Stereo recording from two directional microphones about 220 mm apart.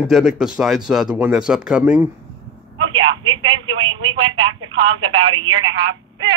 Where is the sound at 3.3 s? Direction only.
20° right (ahead or behind).